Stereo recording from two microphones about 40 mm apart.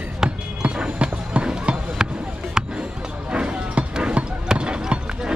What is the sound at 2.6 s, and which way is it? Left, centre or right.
Music, centre.